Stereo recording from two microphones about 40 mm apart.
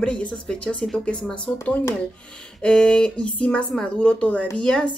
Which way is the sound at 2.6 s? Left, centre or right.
Centre.